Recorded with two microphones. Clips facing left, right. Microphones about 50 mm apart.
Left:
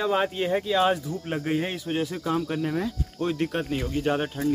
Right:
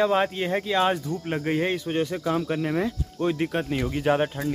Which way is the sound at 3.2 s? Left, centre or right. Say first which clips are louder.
Right 2 dB; centre.